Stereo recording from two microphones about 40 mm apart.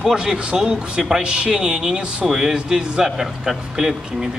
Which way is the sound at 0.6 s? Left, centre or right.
Centre.